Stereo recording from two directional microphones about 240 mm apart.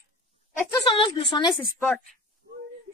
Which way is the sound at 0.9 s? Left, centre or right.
Left.